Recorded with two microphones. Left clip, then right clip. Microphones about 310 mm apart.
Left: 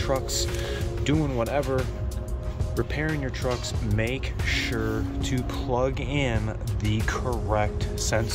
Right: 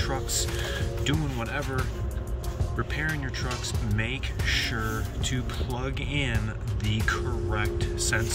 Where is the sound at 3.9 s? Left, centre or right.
Centre.